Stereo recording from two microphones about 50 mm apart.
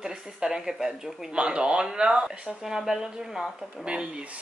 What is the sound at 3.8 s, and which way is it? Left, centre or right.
Speech, centre.